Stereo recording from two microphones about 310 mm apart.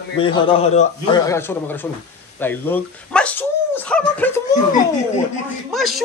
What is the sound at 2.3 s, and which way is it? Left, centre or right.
Dog, centre.